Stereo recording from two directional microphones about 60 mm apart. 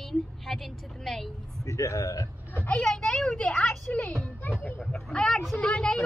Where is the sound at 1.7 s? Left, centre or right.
Left.